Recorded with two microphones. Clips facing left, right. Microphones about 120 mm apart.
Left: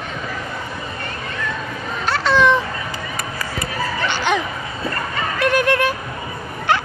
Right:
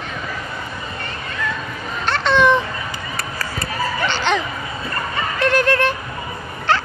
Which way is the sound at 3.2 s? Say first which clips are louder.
Even; 15° left (ahead or behind).